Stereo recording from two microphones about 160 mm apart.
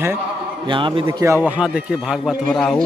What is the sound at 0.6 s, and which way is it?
Speech, 30° right (ahead or behind).